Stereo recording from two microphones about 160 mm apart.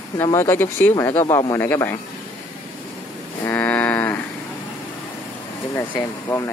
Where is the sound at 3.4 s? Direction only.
10° left (ahead or behind).